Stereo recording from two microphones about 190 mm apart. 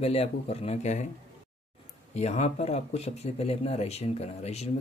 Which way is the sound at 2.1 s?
35° left (ahead or behind).